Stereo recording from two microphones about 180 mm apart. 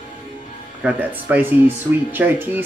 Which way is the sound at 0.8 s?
10° right (ahead or behind).